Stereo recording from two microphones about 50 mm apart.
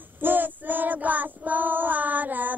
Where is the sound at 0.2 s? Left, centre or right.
Right.